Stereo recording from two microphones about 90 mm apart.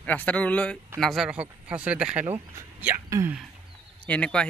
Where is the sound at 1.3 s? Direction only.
15° right (ahead or behind).